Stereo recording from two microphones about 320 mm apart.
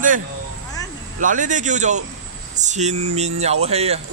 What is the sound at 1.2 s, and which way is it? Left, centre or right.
A man's voice, right.